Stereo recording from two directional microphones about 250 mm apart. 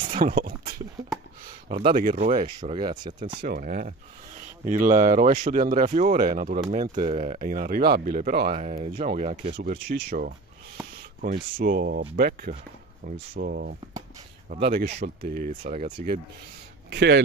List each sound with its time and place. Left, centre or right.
0.0 s a sound: right
1.7 s speech: right
3.4 s speech: right
9.6 s speech: right
11.5 s speech: right
16.9 s speech: right